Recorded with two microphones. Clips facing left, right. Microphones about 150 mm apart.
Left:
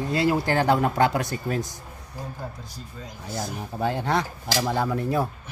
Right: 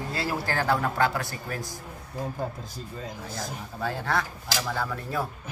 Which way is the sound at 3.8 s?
20° left (ahead or behind).